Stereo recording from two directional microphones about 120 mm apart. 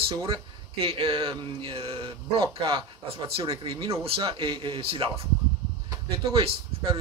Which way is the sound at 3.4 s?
50° right (ahead or behind).